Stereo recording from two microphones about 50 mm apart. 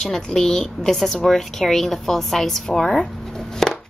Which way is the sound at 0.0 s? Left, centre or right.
Centre.